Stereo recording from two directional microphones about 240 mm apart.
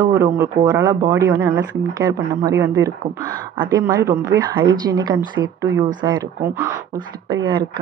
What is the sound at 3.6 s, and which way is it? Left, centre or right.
Speech, centre.